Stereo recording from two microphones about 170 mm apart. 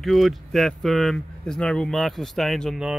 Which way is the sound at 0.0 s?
Centre (ahead or behind).